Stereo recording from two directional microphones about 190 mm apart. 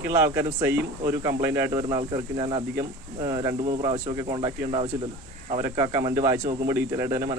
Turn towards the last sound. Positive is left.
turn(degrees=-15)  # may be behind; listen again after turning